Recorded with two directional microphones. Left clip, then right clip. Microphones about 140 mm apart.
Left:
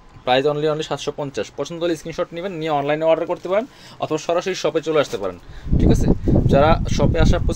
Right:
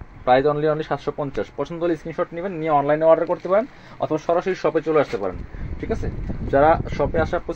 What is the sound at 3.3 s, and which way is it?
Speech, 15° left (ahead or behind).